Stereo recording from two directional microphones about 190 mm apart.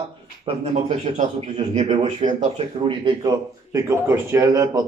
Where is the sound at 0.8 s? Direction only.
35° right (ahead or behind).